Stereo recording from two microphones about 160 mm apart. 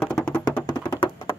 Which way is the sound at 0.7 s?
30° left (ahead or behind).